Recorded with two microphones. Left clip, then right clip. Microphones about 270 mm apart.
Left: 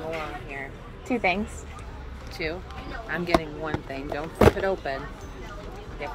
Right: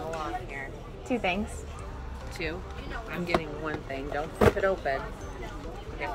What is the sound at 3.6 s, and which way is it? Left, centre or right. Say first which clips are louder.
Speech: left 2 dB; left.